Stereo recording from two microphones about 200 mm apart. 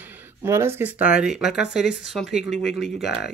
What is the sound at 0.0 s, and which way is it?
Speech, 10° right (ahead or behind).